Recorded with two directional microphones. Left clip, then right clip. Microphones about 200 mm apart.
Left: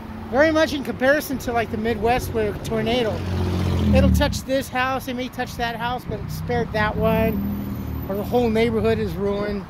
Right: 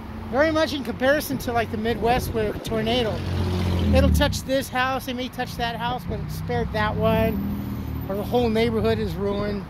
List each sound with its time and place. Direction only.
0.3 s speech: 15° left (ahead or behind)
3.4 s vehicle: 50° left (ahead or behind)
3.9 s speech: centre (ahead or behind)